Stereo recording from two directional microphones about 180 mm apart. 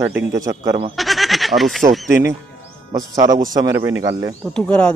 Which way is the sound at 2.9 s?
20° right (ahead or behind).